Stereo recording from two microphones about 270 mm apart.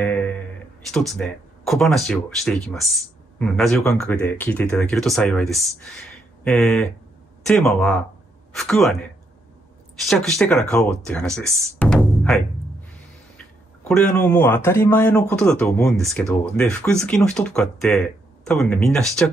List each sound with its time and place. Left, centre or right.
0.0 s a sound: centre
0.9 s speech: centre
10.0 s speech: centre
13.8 s speech: centre